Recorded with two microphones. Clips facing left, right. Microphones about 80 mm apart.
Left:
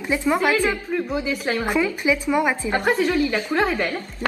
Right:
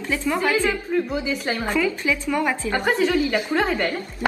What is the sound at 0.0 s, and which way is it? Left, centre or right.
Speech, centre.